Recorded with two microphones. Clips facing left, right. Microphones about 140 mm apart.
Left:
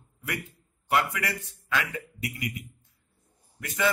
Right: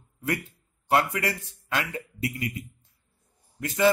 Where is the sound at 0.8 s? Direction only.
30° right (ahead or behind).